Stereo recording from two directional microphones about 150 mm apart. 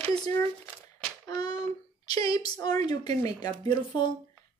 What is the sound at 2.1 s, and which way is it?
Speech, 25° left (ahead or behind).